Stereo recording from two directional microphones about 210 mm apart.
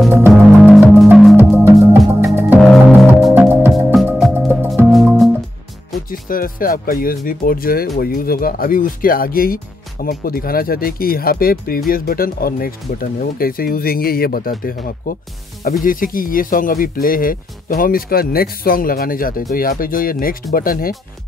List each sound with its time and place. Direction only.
0.0 s music: 5° right (ahead or behind)
6.0 s speech: 40° left (ahead or behind)